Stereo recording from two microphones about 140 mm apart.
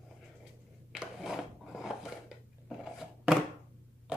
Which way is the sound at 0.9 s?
5° right (ahead or behind).